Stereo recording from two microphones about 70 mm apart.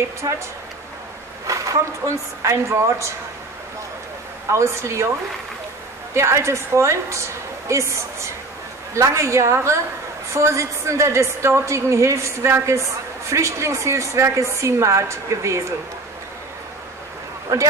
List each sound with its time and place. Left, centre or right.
0.2 s speech: right
1.5 s a woman's voice: right
4.5 s a woman's voice: right
6.1 s a woman's voice: right
17.5 s a woman's voice: right